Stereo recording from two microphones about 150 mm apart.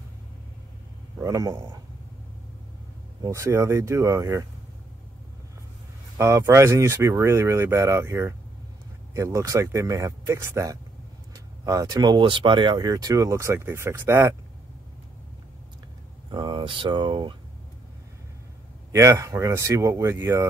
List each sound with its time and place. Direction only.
1.2 s speech: 20° right (ahead or behind)
3.2 s speech: 20° right (ahead or behind)
6.1 s speech: 20° right (ahead or behind)
16.3 s speech: 30° right (ahead or behind)
18.9 s speech: 20° right (ahead or behind)